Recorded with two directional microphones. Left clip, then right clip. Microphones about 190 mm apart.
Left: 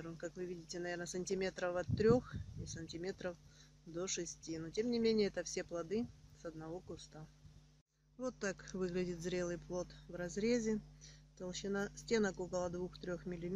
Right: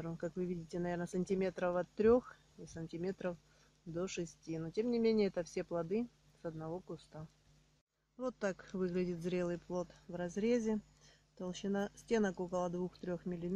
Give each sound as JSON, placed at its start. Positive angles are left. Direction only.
{"t": 0.0, "sound": "speech", "side_deg": -30}
{"t": 8.2, "sound": "speech", "side_deg": -35}